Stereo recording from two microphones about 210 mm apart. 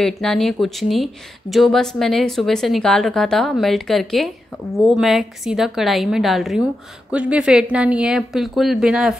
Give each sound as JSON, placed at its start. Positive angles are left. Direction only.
{"t": 0.0, "sound": "speech", "side_deg": 0}